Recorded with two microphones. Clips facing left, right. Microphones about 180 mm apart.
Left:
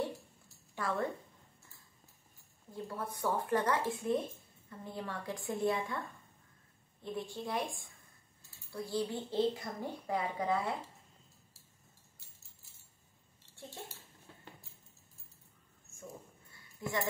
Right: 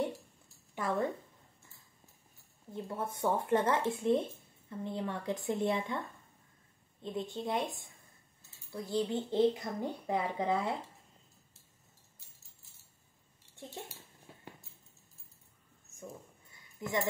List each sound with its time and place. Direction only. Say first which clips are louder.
0.7 s speech: right 3 dB; 20° right (ahead or behind)
2.7 s speech: right 3 dB; 25° right (ahead or behind)
7.0 s speech: right 2 dB; 20° right (ahead or behind)
13.6 s a sound: right 2 dB; 20° right (ahead or behind)
16.8 s speech: right 1 dB; 20° right (ahead or behind)